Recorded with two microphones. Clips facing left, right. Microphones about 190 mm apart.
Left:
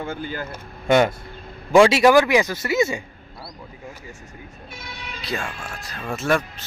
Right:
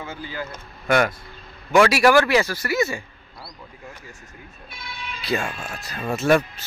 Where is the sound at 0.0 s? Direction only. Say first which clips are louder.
Left 3 dB; 55° left (ahead or behind).